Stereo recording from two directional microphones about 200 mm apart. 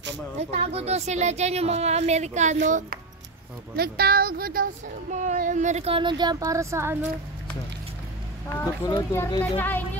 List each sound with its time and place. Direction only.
0.4 s speech: 30° right (ahead or behind)
3.7 s speech: 50° right (ahead or behind)
5.1 s speech: 35° right (ahead or behind); by 7.0 s 15° right (ahead or behind)
8.5 s speech: 15° left (ahead or behind)